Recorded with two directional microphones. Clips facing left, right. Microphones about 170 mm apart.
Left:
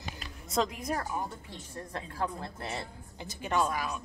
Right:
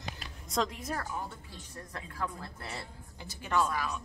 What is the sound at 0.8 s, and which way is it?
Speech, 15° left (ahead or behind).